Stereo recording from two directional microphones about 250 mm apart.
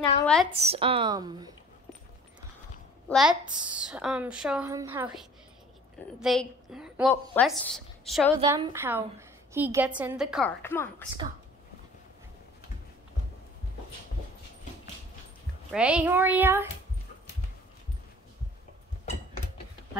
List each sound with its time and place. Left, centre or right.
0.2 s a woman's voice: centre
0.5 s a woman's voice: right
3.1 s a woman's voice: centre
6.2 s a woman's voice: centre
8.4 s a child's voice: centre
10.6 s speech: centre
15.7 s a child's voice: centre